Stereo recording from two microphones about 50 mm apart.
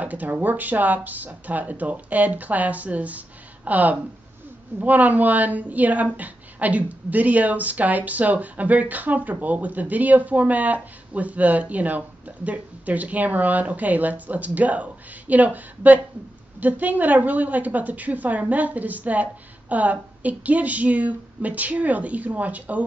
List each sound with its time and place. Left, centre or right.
0.0 s speech: right